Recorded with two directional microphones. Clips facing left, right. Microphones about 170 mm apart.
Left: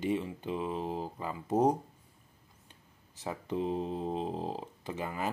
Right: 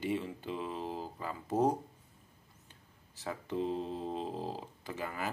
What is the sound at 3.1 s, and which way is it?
Speech, 20° left (ahead or behind).